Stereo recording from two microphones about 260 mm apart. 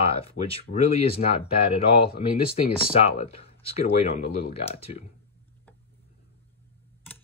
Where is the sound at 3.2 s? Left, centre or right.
Left.